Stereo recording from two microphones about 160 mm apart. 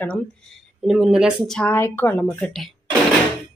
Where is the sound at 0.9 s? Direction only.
5° right (ahead or behind).